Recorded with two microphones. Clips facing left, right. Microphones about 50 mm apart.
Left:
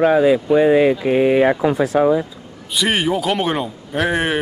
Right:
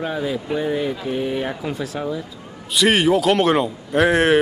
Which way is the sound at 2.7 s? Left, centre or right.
Centre.